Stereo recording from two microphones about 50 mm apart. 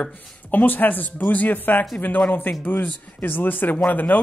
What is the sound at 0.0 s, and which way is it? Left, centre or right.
Speech, left.